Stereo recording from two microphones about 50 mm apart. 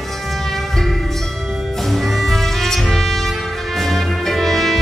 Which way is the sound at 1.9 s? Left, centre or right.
Centre.